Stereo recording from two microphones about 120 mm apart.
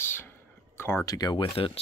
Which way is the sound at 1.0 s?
35° left (ahead or behind).